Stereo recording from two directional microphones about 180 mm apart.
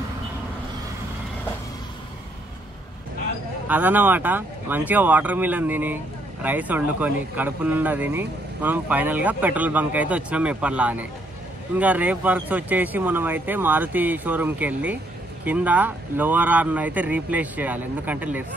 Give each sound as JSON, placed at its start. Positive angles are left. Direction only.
{"t": 3.6, "sound": "speech", "side_deg": -10}